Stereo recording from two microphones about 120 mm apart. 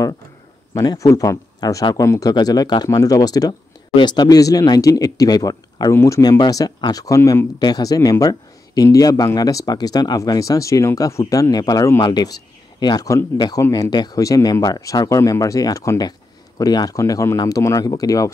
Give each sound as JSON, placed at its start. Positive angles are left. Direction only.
{"t": 0.7, "sound": "speech", "side_deg": 30}